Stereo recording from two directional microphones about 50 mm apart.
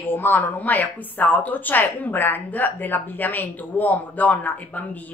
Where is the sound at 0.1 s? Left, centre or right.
Left.